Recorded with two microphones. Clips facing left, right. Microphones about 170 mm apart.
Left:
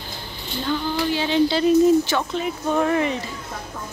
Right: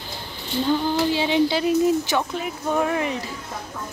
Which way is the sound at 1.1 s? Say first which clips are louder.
Left 1 dB; 15° right (ahead or behind).